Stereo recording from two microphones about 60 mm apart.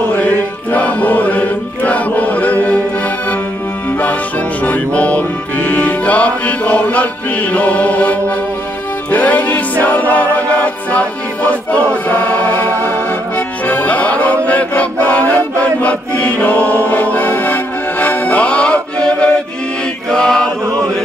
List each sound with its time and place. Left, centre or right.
0.2 s music: left
4.6 s music: left
20.1 s chant: centre